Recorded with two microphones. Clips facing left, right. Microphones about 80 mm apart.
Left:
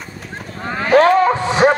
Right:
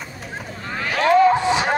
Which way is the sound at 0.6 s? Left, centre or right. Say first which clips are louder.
Left 10 dB; left.